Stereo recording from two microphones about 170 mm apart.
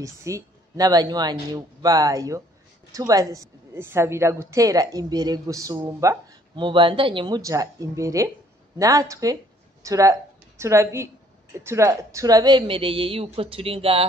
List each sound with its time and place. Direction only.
0.0 s a woman's voice: 20° right (ahead or behind); by 14.0 s 35° right (ahead or behind)